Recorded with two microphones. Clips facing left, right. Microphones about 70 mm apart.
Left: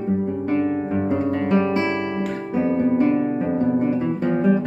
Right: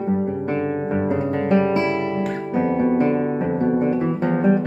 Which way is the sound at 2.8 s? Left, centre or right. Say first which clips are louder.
Even; right.